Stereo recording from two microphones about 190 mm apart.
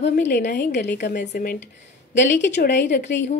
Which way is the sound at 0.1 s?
60° left (ahead or behind).